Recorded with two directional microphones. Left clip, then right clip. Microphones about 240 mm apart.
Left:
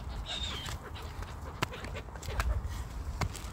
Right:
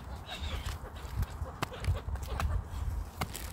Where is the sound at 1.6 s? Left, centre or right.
Centre.